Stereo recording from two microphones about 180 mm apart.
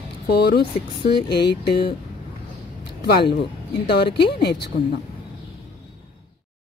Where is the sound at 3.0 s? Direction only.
65° left (ahead or behind).